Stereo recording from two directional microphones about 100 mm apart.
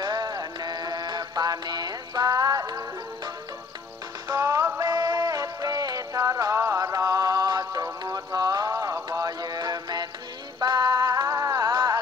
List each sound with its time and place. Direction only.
0.0 s music: 40° right (ahead or behind)
4.3 s music: 35° right (ahead or behind)